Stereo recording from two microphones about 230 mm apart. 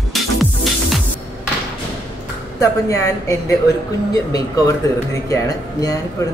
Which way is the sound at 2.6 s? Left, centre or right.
Centre.